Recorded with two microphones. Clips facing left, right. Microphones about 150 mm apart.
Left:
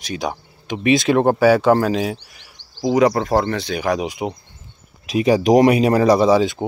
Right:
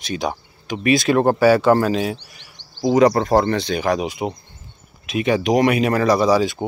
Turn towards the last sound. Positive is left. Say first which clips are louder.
# left 2 dB
turn(degrees=25)  # may be behind; listen again after turning